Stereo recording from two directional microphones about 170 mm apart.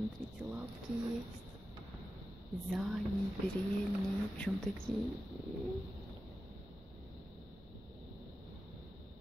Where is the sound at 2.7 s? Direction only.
5° right (ahead or behind).